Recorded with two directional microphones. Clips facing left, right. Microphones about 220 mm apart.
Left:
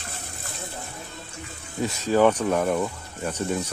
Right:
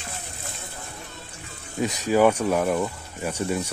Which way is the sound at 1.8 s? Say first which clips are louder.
Even; 10° right (ahead or behind).